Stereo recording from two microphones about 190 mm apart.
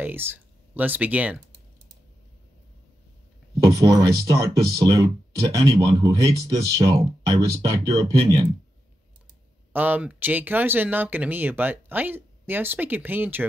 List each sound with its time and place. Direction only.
0.0 s speech: 10° right (ahead or behind)
3.6 s speech: 20° right (ahead or behind)
9.7 s speech: 10° right (ahead or behind)